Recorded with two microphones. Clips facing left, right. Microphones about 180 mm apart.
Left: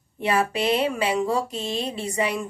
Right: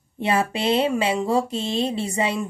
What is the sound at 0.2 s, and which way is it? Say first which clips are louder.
A woman's voice: right 1 dB; 25° right (ahead or behind).